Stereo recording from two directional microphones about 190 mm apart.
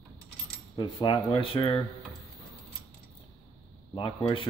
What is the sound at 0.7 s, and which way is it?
Speech, 25° left (ahead or behind).